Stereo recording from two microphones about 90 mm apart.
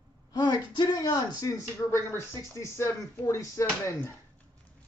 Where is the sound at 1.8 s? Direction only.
25° left (ahead or behind).